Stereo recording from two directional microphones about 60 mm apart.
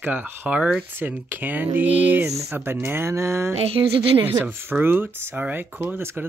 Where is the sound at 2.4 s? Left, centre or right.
Right.